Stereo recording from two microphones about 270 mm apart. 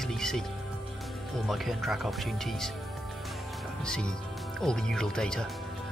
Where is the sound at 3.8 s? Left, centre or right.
Centre.